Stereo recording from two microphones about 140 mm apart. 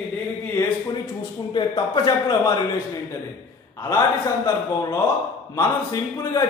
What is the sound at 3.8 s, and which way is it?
A man's voice, 20° left (ahead or behind).